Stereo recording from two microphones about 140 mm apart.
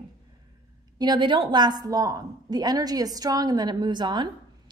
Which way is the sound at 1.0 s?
30° right (ahead or behind).